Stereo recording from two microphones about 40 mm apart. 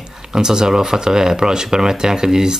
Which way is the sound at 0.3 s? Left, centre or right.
Centre.